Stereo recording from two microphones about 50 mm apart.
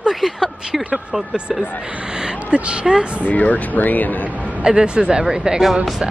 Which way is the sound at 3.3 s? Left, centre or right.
Left.